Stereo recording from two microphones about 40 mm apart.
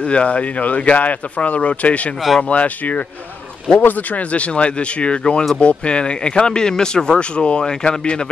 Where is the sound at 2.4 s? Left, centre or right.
Left.